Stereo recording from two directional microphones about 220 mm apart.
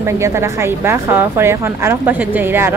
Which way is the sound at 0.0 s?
10° right (ahead or behind).